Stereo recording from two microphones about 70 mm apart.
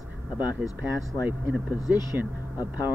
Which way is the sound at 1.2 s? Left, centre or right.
Right.